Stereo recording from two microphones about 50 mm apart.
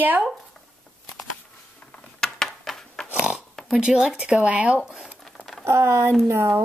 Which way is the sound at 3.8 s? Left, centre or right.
Centre.